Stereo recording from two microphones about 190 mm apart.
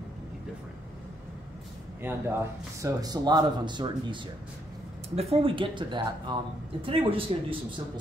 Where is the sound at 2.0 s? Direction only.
10° right (ahead or behind); by 8.0 s 25° right (ahead or behind).